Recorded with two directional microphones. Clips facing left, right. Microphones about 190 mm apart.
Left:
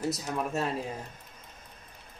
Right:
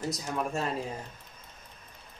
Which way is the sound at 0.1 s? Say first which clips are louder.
Left 1 dB; 5° left (ahead or behind).